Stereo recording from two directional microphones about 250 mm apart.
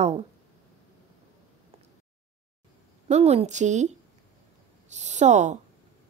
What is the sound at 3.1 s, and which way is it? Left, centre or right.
Speech, right.